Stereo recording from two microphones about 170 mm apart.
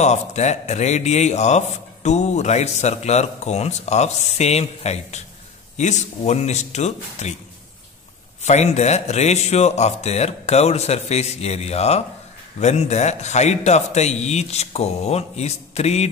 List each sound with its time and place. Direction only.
0.0 s a man's voice: 40° left (ahead or behind)
8.4 s a man's voice: 40° left (ahead or behind)